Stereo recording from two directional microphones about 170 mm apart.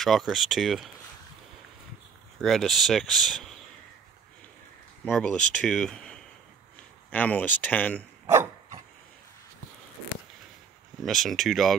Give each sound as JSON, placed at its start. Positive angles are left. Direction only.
{"t": 0.0, "sound": "speech", "side_deg": 0}
{"t": 2.4, "sound": "speech", "side_deg": 0}
{"t": 5.0, "sound": "speech", "side_deg": 5}
{"t": 8.3, "sound": "dog", "side_deg": -15}
{"t": 11.0, "sound": "speech", "side_deg": 0}